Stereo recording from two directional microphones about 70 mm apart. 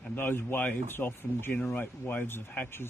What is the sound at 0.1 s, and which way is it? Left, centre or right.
Speech, left.